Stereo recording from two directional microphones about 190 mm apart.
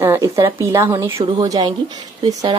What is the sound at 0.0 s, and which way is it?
Speech, 15° right (ahead or behind).